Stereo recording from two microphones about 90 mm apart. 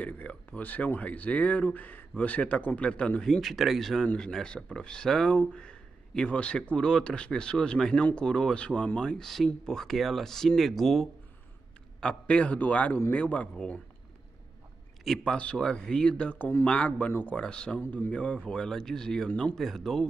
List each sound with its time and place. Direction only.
0.0 s speech: 15° left (ahead or behind); by 11.1 s centre (ahead or behind)
12.0 s speech: 10° left (ahead or behind)
15.0 s speech: 10° left (ahead or behind)